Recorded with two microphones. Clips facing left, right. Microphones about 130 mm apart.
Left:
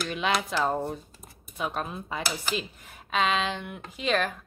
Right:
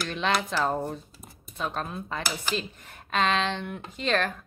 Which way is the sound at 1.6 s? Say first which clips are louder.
Even; 5° left (ahead or behind).